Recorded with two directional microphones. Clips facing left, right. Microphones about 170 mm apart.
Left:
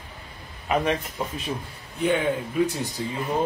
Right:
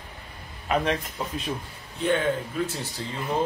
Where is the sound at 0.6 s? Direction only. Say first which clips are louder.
Left 1 dB; 5° left (ahead or behind).